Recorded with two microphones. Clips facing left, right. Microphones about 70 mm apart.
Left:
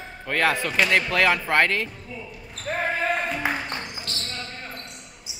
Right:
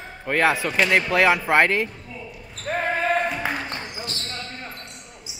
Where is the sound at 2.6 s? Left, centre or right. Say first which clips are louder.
Right 2 dB; centre.